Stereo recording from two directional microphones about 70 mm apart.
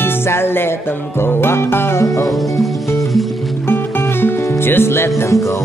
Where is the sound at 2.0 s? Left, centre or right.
Left.